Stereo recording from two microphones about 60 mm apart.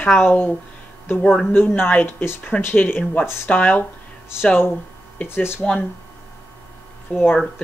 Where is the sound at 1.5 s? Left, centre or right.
Left.